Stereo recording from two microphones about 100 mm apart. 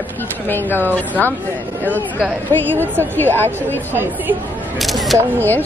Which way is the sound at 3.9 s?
20° right (ahead or behind).